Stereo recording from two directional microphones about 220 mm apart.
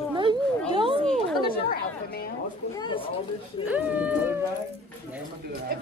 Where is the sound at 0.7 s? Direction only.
25° right (ahead or behind).